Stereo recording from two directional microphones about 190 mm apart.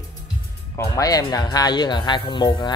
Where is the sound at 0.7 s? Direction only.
20° left (ahead or behind).